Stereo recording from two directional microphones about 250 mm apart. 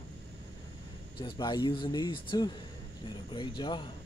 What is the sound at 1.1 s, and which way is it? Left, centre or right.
Speech, centre.